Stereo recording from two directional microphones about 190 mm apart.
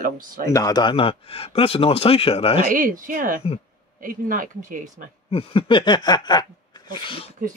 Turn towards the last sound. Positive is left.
turn(degrees=25)  # may be behind; listen again after turning